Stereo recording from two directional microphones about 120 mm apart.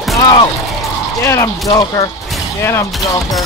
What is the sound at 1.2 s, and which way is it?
Speech, 25° left (ahead or behind).